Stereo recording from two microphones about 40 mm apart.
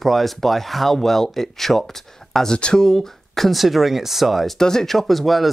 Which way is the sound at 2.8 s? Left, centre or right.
Centre.